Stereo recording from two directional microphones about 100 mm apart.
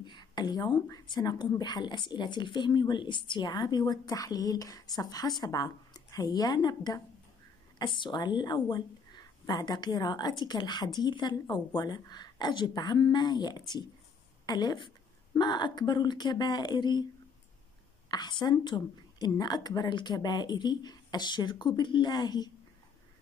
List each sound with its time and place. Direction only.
0.0 s a woman's voice: 50° left (ahead or behind)
7.8 s speech: 50° left (ahead or behind)
18.1 s speech: 45° left (ahead or behind)